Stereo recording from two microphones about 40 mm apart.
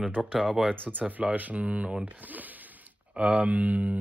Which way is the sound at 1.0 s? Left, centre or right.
Right.